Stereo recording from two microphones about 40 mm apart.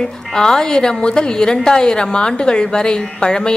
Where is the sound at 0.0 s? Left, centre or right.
Centre.